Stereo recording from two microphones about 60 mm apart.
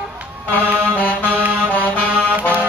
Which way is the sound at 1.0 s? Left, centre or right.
Left.